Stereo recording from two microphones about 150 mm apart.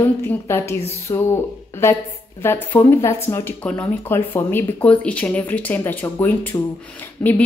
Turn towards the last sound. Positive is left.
turn(degrees=10)  # may be behind; listen again after turning